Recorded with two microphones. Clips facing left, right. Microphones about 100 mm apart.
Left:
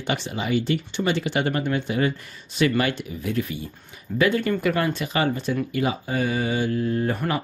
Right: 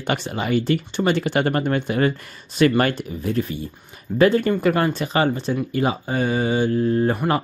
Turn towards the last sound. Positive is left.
turn(degrees=-35)  # may be behind; listen again after turning